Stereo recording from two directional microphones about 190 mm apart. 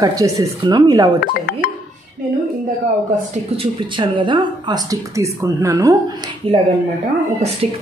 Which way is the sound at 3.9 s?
25° right (ahead or behind).